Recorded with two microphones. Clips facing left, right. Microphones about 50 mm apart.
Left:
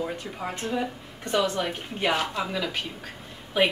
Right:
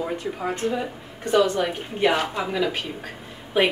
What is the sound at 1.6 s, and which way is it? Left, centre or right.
Speech, centre.